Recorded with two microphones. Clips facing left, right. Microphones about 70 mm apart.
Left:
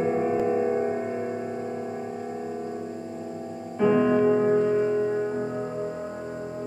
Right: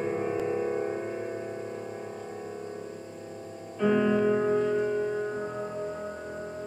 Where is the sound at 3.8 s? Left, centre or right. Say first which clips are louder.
Left 4 dB; left.